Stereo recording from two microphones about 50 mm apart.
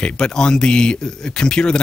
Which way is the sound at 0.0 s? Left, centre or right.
Centre.